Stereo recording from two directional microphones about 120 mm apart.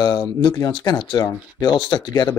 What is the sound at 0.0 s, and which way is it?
Speech, 40° left (ahead or behind).